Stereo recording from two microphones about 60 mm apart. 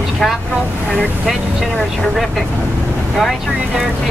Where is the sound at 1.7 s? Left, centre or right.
Centre.